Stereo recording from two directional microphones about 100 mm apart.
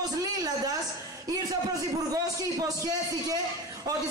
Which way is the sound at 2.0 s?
35° right (ahead or behind).